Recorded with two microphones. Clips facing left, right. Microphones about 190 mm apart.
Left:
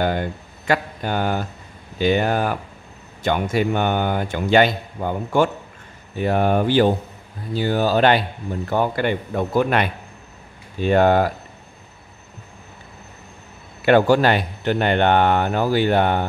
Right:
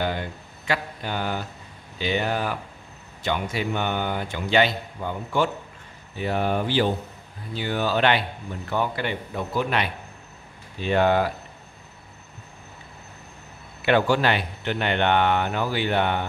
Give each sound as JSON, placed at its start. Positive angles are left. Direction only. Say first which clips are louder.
{"t": 0.0, "sound": "speech", "louder": "left 6 dB", "side_deg": 50}
{"t": 7.5, "sound": "speech", "louder": "left 6 dB", "side_deg": 40}
{"t": 13.8, "sound": "speech", "louder": "left 6 dB", "side_deg": 45}